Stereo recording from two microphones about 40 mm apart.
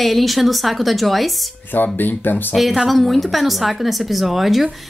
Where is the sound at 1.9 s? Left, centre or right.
Left.